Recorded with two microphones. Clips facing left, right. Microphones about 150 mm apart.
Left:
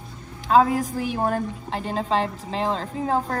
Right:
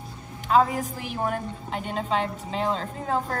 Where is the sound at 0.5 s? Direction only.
35° left (ahead or behind).